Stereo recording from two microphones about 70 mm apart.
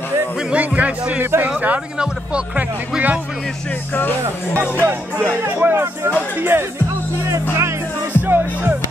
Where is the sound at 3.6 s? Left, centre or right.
Left.